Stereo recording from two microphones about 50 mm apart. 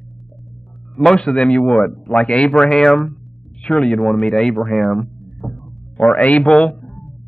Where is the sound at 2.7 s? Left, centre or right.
Centre.